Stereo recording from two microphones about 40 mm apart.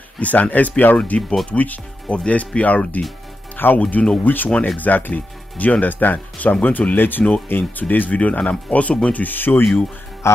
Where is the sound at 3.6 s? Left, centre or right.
Left.